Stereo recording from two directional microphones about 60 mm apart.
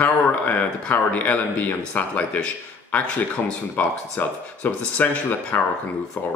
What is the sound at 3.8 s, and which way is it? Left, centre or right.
A man's voice, left.